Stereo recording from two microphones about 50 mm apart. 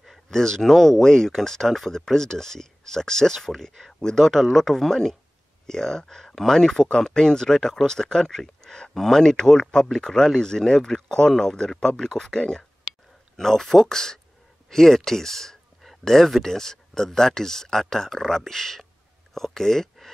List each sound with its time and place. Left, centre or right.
0.3 s speech: centre